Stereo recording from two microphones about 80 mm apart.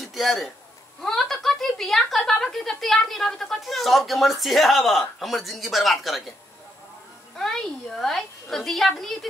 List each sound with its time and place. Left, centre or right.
0.0 s a sound: centre
1.0 s a woman's voice: centre
7.3 s a woman's voice: centre